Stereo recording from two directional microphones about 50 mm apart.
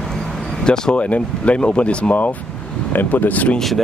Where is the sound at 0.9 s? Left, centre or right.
Left.